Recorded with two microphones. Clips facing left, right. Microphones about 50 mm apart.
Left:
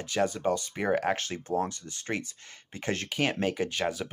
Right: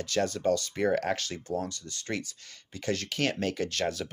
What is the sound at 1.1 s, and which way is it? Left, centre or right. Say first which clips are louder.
Speech: left 2 dB; left.